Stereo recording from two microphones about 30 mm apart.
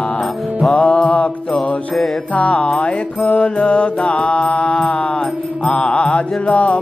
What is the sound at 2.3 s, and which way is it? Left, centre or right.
Music, left.